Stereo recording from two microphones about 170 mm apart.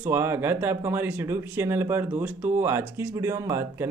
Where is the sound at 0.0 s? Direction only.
15° right (ahead or behind).